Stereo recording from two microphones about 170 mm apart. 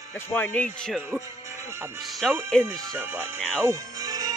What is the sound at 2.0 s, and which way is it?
Speech, centre (ahead or behind).